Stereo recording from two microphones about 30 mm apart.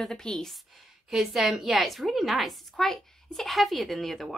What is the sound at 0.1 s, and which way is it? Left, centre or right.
Speech, left.